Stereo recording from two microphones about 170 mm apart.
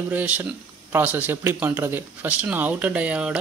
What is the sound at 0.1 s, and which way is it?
Speech, 10° right (ahead or behind).